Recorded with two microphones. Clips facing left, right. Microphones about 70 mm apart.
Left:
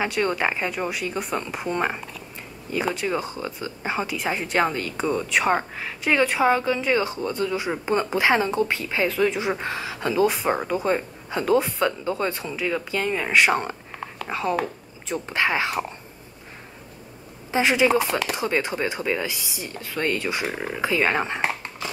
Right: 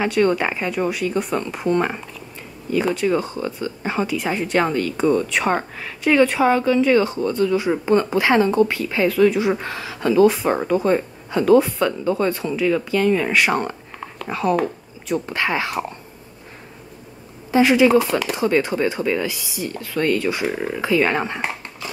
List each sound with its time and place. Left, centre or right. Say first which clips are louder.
0.0 s speech: right 5 dB; centre
15.2 s speech: left 4 dB; left
17.5 s speech: right 5 dB; left